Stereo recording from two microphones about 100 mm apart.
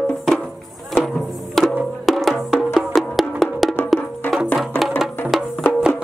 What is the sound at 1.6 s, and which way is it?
Music, centre (ahead or behind).